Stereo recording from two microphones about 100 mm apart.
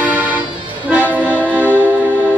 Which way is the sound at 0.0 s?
15° right (ahead or behind).